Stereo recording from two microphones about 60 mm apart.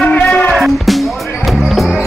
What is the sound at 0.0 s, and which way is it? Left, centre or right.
Music, left.